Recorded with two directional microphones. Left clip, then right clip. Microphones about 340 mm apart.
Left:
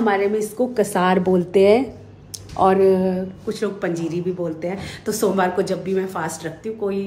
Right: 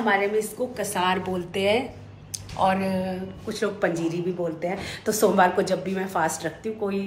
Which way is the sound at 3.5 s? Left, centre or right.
Centre.